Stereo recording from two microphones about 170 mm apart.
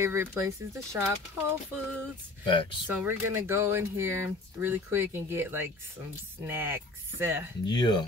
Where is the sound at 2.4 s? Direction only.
30° left (ahead or behind).